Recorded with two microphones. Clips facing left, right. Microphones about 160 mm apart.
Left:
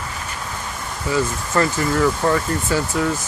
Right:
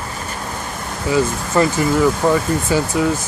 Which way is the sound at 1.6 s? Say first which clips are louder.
Right 3 dB; 20° right (ahead or behind).